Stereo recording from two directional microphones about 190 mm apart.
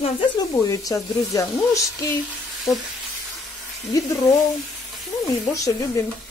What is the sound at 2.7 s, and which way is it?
Speech, centre (ahead or behind).